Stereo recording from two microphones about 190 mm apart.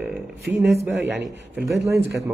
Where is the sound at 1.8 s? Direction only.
15° right (ahead or behind).